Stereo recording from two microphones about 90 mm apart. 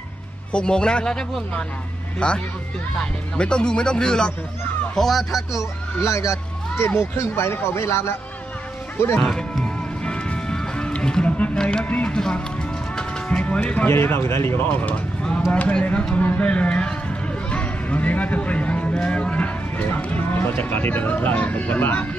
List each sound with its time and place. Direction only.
0.5 s a man's voice: 10° left (ahead or behind)
5.6 s a child's voice: 35° left (ahead or behind)
9.2 s music: 5° left (ahead or behind)
13.8 s speech: 25° left (ahead or behind)